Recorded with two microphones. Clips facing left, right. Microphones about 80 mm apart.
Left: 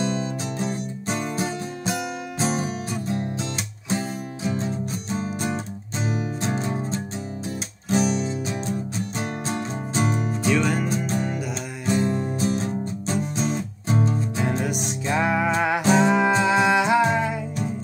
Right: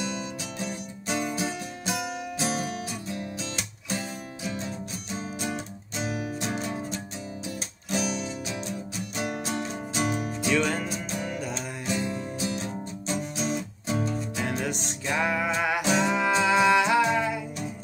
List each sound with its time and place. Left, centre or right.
0.0 s music: left
4.5 s music: left
10.5 s music: centre
11.1 s music: left